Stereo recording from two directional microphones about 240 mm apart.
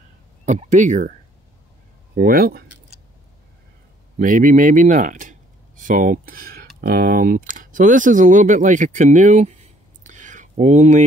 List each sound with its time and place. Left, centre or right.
0.5 s speech: right
2.1 s speech: right
4.2 s speech: right
10.0 s a sound: right